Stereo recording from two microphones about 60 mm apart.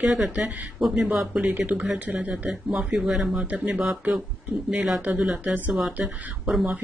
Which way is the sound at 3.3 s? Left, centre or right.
Right.